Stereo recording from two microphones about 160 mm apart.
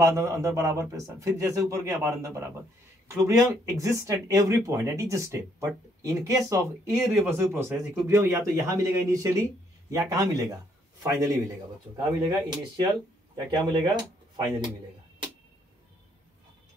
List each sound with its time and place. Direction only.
0.0 s a man's voice: 20° right (ahead or behind)